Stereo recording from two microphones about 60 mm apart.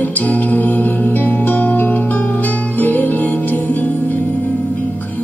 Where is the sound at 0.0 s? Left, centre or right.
Left.